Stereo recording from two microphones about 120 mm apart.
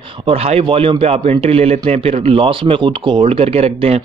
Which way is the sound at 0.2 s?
55° right (ahead or behind).